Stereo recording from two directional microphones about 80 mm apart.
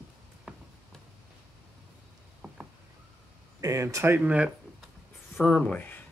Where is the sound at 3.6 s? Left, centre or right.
Right.